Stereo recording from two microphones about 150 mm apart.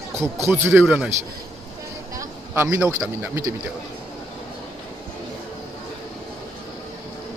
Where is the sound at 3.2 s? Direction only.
15° right (ahead or behind).